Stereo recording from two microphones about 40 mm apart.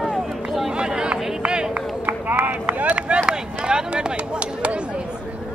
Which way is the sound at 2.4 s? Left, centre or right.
Right.